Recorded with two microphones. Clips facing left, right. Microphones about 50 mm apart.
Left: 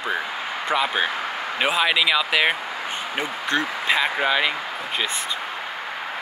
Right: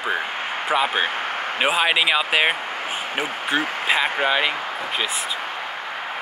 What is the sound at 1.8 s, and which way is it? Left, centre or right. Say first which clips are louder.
Speech: left 1 dB; right.